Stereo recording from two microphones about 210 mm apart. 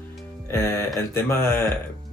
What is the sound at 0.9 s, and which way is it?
Speech, 15° left (ahead or behind).